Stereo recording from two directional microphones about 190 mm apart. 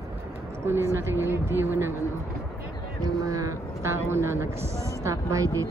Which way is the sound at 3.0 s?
15° right (ahead or behind).